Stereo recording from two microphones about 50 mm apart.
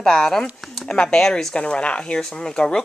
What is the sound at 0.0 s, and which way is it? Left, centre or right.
Speech, centre.